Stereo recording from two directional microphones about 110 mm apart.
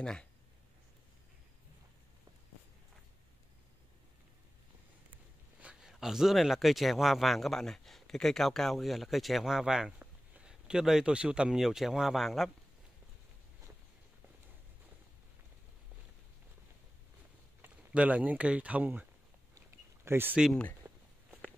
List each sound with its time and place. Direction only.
0.0 s speech: 5° left (ahead or behind)
5.6 s speech: 10° right (ahead or behind)
17.9 s speech: 15° right (ahead or behind)
20.1 s speech: 20° right (ahead or behind)